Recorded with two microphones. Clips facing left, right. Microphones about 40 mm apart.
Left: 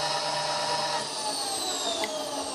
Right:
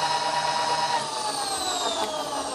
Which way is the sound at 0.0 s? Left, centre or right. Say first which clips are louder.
Right 5 dB; right.